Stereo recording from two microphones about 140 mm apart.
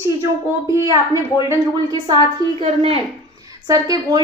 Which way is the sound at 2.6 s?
45° right (ahead or behind).